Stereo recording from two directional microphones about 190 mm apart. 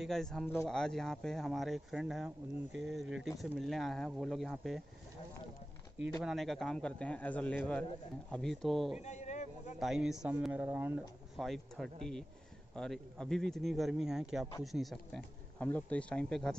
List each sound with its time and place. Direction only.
0.0 s speech: centre (ahead or behind)
6.2 s speech: centre (ahead or behind)
9.0 s speech: 40° left (ahead or behind)
9.8 s speech: centre (ahead or behind)
11.4 s speech: centre (ahead or behind)